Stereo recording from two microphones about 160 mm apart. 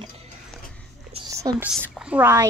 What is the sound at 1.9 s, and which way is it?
Speech, 10° right (ahead or behind).